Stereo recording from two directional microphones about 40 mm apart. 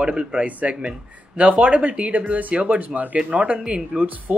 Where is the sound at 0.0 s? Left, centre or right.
Right.